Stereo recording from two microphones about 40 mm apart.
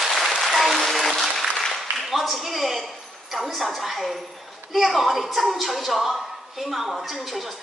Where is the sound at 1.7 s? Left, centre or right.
Centre.